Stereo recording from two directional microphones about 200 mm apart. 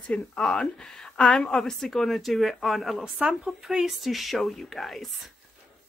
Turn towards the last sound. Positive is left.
turn(degrees=0)  # may be behind; listen again after turning